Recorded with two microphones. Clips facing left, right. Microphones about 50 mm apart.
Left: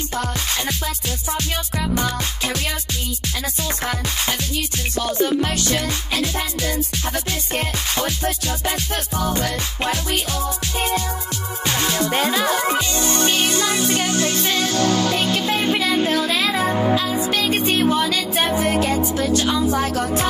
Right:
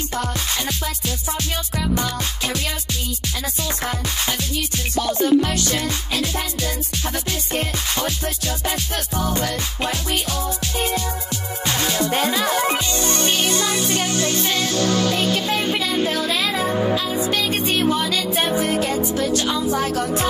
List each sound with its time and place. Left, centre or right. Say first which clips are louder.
5.0 s music: right 3 dB; left
7.5 s music: left 1 dB; left
11.6 s music: left 1 dB; left
15.8 s music: left 2 dB; left
17.9 s music: left 1 dB; left